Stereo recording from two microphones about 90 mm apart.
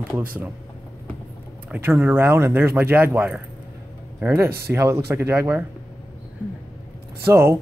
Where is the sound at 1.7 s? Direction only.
20° right (ahead or behind).